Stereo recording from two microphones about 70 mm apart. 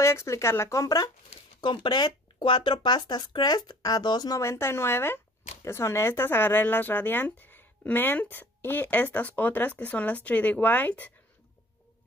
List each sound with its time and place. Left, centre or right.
0.0 s speech: left
0.8 s speech: left
1.9 s speech: left
4.4 s speech: left